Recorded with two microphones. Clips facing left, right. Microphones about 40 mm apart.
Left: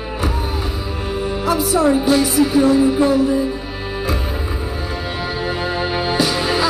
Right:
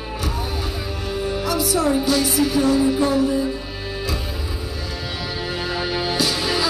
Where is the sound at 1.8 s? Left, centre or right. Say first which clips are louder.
Left 5 dB; centre.